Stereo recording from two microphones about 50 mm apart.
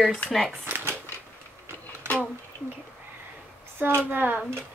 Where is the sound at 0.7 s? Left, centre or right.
Right.